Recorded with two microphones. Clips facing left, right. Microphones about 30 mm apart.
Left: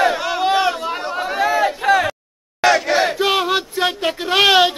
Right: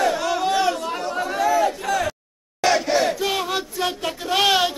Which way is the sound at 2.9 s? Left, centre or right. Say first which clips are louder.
Left 4 dB; left.